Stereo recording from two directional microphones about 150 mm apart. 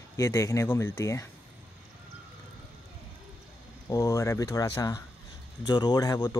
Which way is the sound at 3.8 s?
20° left (ahead or behind).